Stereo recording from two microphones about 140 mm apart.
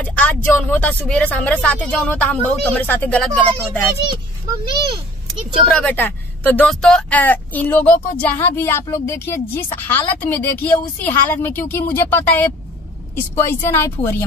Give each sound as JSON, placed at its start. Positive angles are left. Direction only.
{"t": 0.0, "sound": "speech", "side_deg": 10}
{"t": 5.6, "sound": "speech", "side_deg": 5}
{"t": 13.5, "sound": "speech", "side_deg": 15}